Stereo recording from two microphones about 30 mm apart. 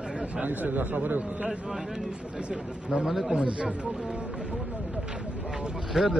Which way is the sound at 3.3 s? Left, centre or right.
Right.